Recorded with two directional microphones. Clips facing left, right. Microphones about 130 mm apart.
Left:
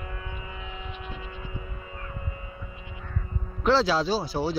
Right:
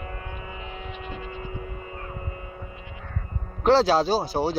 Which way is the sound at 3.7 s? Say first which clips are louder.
Right 4 dB; 50° right (ahead or behind).